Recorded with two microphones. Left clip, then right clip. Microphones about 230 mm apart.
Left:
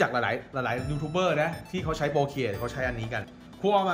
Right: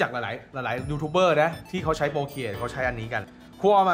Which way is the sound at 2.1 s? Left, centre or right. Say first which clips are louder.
Left 2 dB; centre.